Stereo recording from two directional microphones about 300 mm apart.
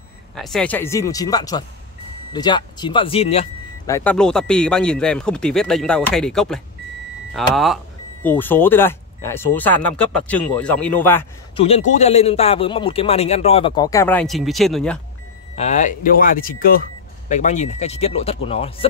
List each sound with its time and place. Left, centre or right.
0.4 s a man's voice: centre
3.9 s speech: centre
11.5 s a man's voice: centre
15.5 s speech: left